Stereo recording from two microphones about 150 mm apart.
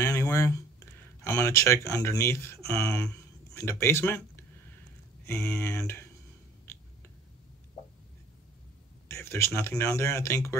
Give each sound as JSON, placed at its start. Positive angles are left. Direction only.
{"t": 0.0, "sound": "speech", "side_deg": 20}
{"t": 9.1, "sound": "a sound", "side_deg": 15}
{"t": 9.6, "sound": "speech", "side_deg": 20}